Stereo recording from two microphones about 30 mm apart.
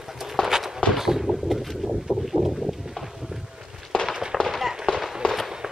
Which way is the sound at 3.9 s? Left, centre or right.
Left.